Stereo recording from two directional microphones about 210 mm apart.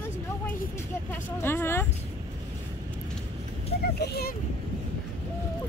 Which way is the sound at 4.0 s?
50° left (ahead or behind).